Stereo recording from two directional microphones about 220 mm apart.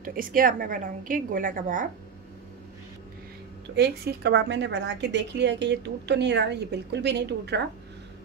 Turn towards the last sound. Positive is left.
turn(degrees=-50)  # may be behind; listen again after turning